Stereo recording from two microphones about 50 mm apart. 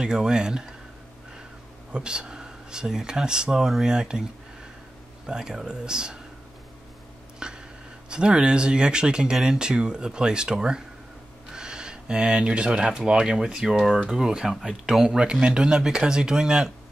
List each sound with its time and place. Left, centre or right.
0.0 s speech: centre
1.9 s speech: centre
7.3 s a sound: centre
8.1 s speech: centre
14.1 s speech: centre
15.0 s speech: centre